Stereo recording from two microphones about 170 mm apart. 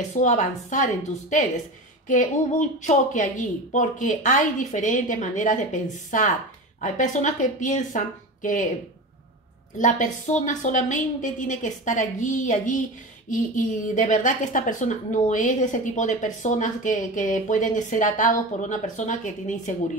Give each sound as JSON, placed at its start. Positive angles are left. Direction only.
{"t": 0.1, "sound": "a woman's voice", "side_deg": 45}
{"t": 9.8, "sound": "a woman's voice", "side_deg": 50}